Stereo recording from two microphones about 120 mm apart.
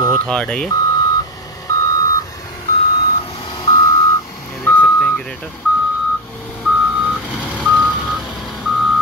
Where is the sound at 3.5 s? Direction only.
40° left (ahead or behind).